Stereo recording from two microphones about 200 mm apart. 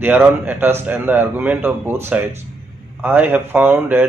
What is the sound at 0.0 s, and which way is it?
Speech, 10° right (ahead or behind).